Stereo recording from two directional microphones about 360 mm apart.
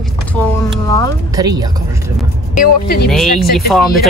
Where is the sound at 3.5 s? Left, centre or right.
Centre.